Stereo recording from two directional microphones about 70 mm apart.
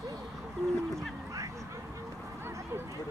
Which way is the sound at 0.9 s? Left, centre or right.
Right.